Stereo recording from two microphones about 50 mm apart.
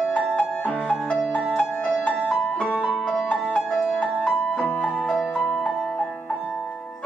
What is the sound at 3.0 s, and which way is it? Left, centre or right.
Music, centre.